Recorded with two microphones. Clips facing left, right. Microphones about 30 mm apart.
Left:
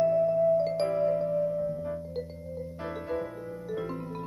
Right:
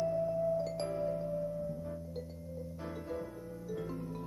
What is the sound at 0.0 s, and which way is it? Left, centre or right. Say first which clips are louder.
Music: left 9 dB; left.